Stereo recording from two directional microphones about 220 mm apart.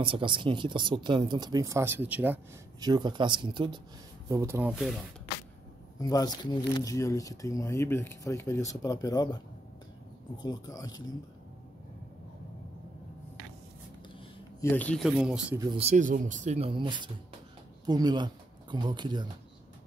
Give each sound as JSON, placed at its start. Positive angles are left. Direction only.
{"t": 0.0, "sound": "speech", "side_deg": -25}
{"t": 2.9, "sound": "speech", "side_deg": -20}
{"t": 4.7, "sound": "speech", "side_deg": 0}
{"t": 5.9, "sound": "speech", "side_deg": 15}
{"t": 14.6, "sound": "speech", "side_deg": 10}
{"t": 15.6, "sound": "speech", "side_deg": -25}